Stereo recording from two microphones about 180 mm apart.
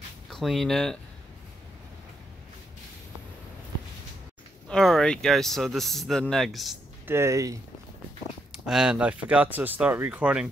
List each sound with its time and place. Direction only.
0.3 s speech: centre (ahead or behind)
4.6 s speech: 5° left (ahead or behind)
7.1 s speech: 15° right (ahead or behind)
8.6 s speech: 5° right (ahead or behind)